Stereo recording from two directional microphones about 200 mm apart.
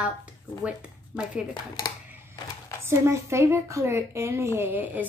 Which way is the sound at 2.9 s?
15° right (ahead or behind).